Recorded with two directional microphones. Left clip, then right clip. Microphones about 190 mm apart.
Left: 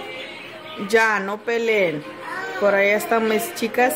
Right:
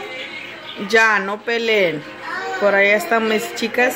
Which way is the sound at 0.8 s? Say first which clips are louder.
Right 3 dB; centre (ahead or behind).